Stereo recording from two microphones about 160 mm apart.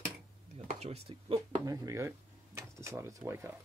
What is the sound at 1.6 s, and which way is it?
Speech, 20° right (ahead or behind).